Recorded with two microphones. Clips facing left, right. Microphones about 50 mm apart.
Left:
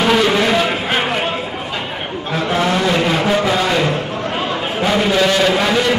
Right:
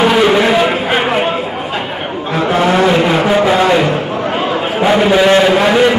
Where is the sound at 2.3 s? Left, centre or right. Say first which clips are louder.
Right 5 dB; centre.